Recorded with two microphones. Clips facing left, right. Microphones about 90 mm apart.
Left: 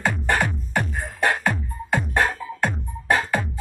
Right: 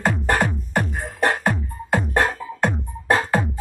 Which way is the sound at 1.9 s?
30° right (ahead or behind).